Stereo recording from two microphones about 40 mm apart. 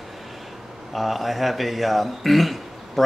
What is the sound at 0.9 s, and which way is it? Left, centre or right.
Speech, centre.